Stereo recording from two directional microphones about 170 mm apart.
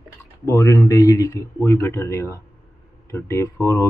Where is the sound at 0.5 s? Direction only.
15° left (ahead or behind).